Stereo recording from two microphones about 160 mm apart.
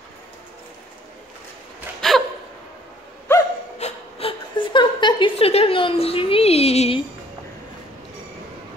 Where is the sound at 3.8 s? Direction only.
35° left (ahead or behind).